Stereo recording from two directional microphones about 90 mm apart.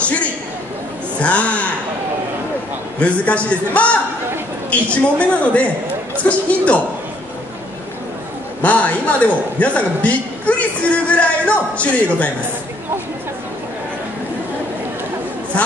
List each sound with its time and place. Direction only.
0.0 s a sound: 15° left (ahead or behind)
1.2 s a man's voice: 15° left (ahead or behind)
3.0 s a man's voice: 15° left (ahead or behind)
8.6 s a man's voice: 15° left (ahead or behind)